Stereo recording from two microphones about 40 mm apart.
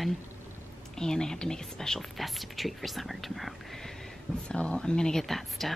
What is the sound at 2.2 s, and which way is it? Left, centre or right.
Speech, centre.